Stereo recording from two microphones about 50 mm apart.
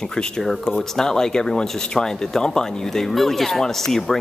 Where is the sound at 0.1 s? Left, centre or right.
Centre.